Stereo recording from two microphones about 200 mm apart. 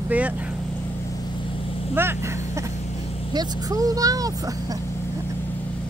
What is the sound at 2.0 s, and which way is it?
Speech, 10° right (ahead or behind).